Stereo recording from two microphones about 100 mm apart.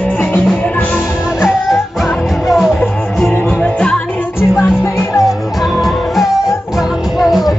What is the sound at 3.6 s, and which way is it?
Music, 10° left (ahead or behind).